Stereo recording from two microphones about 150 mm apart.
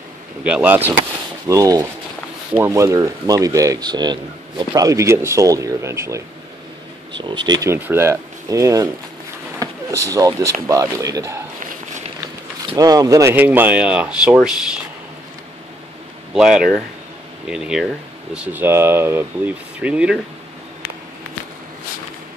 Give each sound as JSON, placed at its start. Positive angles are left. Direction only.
{"t": 0.4, "sound": "speech", "side_deg": -10}
{"t": 1.5, "sound": "speech", "side_deg": -25}
{"t": 7.2, "sound": "speech", "side_deg": -30}
{"t": 7.7, "sound": "speech", "side_deg": -15}
{"t": 12.7, "sound": "speech", "side_deg": -25}
{"t": 16.3, "sound": "speech", "side_deg": -5}